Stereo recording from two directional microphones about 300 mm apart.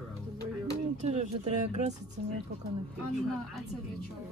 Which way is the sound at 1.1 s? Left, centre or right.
Right.